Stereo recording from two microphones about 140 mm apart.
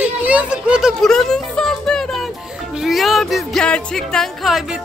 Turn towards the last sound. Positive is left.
turn(degrees=0)  # may be behind; listen again after turning